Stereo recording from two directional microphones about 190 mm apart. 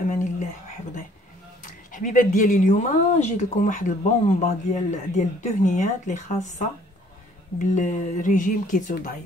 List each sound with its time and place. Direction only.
0.1 s a sound: 40° left (ahead or behind)
1.6 s speech: 45° left (ahead or behind)
7.5 s speech: 40° left (ahead or behind)